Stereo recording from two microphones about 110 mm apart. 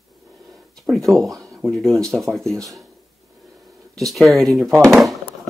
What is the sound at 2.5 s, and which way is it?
Speech, 30° right (ahead or behind).